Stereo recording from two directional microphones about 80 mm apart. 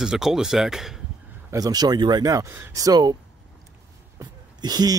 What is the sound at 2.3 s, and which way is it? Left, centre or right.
Speech, right.